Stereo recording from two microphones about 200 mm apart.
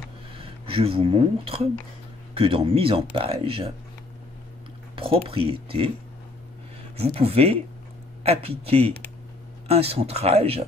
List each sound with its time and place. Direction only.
0.4 s speech: 25° right (ahead or behind)
4.9 s speech: 25° right (ahead or behind)
7.0 s speech: 30° right (ahead or behind)